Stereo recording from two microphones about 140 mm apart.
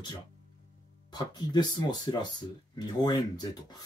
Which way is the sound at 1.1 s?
30° left (ahead or behind).